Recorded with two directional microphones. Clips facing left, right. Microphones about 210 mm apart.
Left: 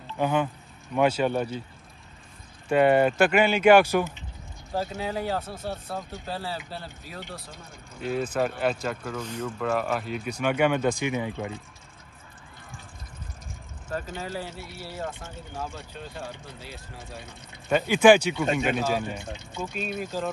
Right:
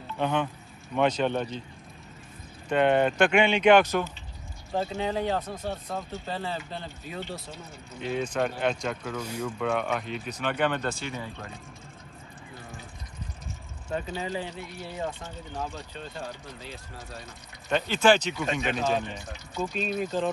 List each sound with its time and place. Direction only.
0.2 s speech: 5° left (ahead or behind)
2.7 s speech: 5° left (ahead or behind)
9.2 s speech: 10° right (ahead or behind)
9.7 s speech: 5° left (ahead or behind)
14.2 s speech: 5° left (ahead or behind)
19.1 s speech: 25° left (ahead or behind)
19.6 s speech: 5° left (ahead or behind)